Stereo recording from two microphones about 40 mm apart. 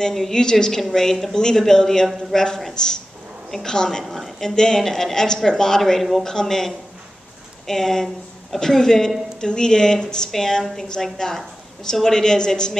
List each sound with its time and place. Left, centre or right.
0.1 s speech: centre
3.4 s a woman's voice: centre
3.7 s speech: centre
4.1 s speech: centre
4.5 s speech: centre